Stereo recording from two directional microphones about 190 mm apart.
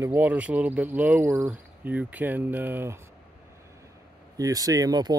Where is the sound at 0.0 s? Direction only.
10° right (ahead or behind).